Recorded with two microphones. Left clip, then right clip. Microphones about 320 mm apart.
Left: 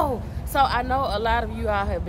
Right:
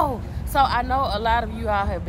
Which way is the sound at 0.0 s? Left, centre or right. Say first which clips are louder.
Right 1 dB; centre.